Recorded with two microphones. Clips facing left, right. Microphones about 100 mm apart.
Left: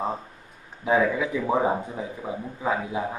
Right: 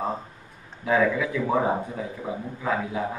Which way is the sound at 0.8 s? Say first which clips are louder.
Even; 20° left (ahead or behind).